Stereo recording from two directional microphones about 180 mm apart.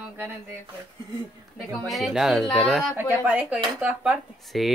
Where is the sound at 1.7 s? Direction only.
Centre (ahead or behind).